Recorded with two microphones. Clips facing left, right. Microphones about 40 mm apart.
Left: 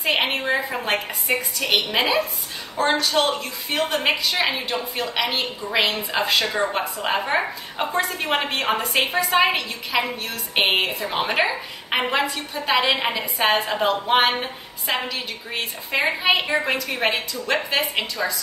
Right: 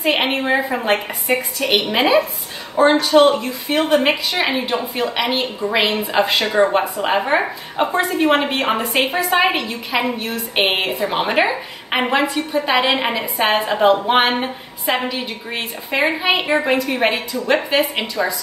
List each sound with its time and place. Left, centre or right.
0.0 s a woman's voice: centre